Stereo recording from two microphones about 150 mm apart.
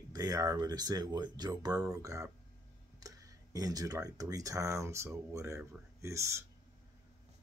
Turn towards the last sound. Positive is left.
turn(degrees=-20)  # may be behind; listen again after turning